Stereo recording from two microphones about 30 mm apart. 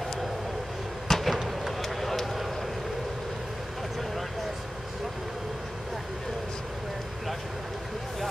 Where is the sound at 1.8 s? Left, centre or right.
Centre.